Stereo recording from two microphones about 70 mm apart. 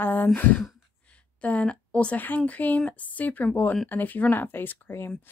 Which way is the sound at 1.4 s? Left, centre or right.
Centre.